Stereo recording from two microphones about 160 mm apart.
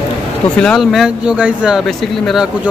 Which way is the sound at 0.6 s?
Centre (ahead or behind).